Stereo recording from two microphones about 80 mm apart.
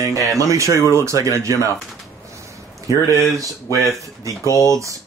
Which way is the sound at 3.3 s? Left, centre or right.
Right.